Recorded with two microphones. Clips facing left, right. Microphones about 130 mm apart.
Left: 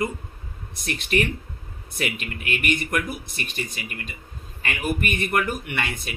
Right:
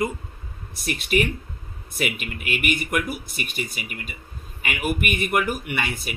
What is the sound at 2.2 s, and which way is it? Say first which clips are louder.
Speech: right 1 dB; 10° right (ahead or behind).